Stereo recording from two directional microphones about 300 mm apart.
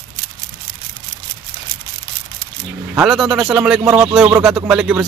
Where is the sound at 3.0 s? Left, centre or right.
Centre.